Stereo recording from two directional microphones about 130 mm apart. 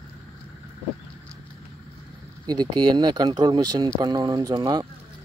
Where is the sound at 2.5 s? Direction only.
35° right (ahead or behind).